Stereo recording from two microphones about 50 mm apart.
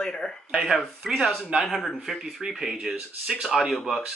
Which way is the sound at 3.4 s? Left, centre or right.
Centre.